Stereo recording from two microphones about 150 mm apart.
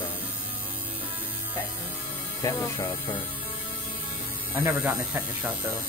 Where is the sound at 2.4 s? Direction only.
25° left (ahead or behind).